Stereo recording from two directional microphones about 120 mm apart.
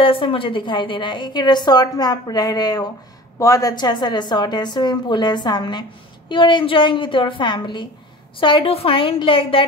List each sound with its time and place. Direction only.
0.0 s a woman's voice: 45° left (ahead or behind)